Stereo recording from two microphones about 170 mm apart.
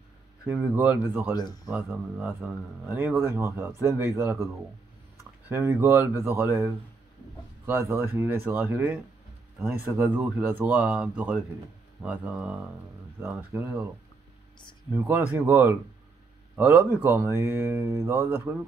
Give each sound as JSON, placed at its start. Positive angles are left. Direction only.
{"t": 0.5, "sound": "a man's voice", "side_deg": -10}
{"t": 1.3, "sound": "speech", "side_deg": 25}
{"t": 1.7, "sound": "a man's voice", "side_deg": -10}
{"t": 15.0, "sound": "a man's voice", "side_deg": -10}